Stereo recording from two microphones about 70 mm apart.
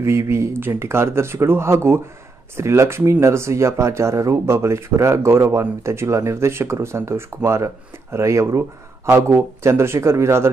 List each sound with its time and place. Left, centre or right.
0.0 s speech: right